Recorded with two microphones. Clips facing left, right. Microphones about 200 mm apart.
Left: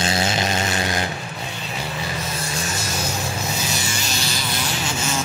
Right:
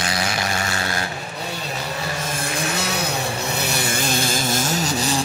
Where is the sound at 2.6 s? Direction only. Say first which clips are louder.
Right 5 dB; 60° right (ahead or behind).